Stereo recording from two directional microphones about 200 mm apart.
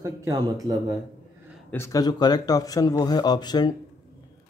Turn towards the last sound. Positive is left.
turn(degrees=20)  # may be behind; listen again after turning